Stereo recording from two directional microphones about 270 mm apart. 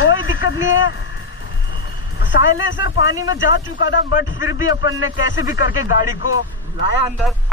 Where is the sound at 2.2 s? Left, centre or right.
Left.